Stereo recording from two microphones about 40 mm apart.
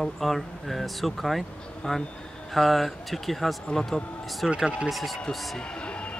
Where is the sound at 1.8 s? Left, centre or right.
Centre.